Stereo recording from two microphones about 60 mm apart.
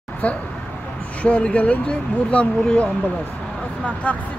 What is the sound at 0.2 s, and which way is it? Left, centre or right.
Speech, left.